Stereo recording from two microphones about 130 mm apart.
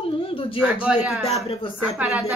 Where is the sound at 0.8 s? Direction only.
10° right (ahead or behind).